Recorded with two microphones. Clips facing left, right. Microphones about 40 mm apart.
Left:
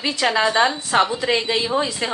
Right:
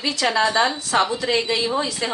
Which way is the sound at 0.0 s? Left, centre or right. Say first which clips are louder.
Left 1 dB; left.